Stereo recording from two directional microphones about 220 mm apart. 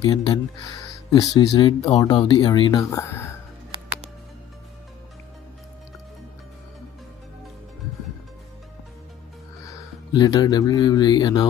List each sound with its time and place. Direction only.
0.0 s speech: 15° left (ahead or behind)
9.7 s speech: 15° left (ahead or behind)